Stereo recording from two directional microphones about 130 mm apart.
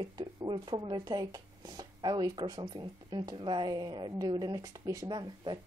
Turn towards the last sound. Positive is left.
turn(degrees=-30)  # may be behind; listen again after turning